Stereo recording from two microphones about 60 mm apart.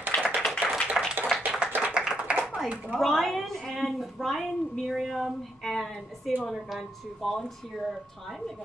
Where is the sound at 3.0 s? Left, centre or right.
Centre.